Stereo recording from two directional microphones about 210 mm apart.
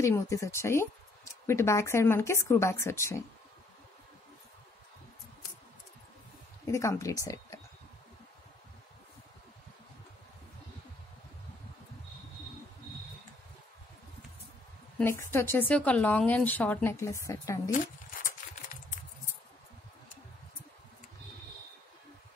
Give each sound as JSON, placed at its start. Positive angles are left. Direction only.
{"t": 0.0, "sound": "speech", "side_deg": 15}
{"t": 6.7, "sound": "speech", "side_deg": 15}
{"t": 15.0, "sound": "speech", "side_deg": 10}
{"t": 18.2, "sound": "a sound", "side_deg": 35}